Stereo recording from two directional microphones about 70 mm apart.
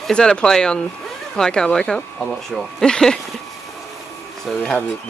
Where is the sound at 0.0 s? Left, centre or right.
Centre.